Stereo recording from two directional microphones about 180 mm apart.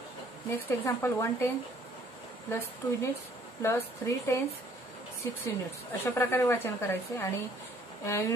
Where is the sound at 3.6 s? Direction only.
15° left (ahead or behind).